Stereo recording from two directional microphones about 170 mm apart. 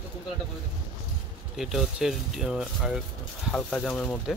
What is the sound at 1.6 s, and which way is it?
Speech, 5° right (ahead or behind).